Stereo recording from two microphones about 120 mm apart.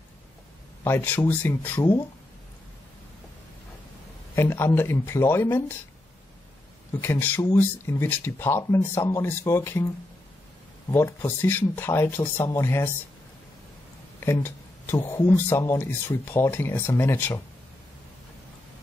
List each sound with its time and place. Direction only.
0.8 s speech: 20° left (ahead or behind)
4.4 s speech: 20° left (ahead or behind)
7.0 s speech: 20° left (ahead or behind)
10.9 s speech: 20° left (ahead or behind)
14.2 s speech: 20° left (ahead or behind)